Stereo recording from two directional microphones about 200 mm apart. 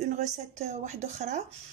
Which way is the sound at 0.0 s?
35° right (ahead or behind).